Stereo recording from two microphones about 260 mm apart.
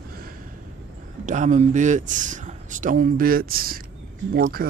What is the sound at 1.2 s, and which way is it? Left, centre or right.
Speech, right.